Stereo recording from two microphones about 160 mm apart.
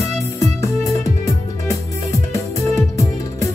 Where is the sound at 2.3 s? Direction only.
20° left (ahead or behind).